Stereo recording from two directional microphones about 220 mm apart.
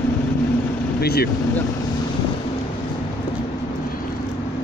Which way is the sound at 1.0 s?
45° left (ahead or behind).